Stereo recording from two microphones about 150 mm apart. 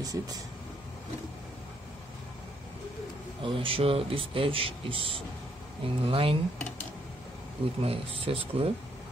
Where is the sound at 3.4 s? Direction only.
35° right (ahead or behind).